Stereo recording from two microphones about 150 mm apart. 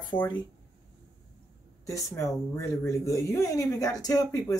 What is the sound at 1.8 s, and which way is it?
Speech, 20° left (ahead or behind).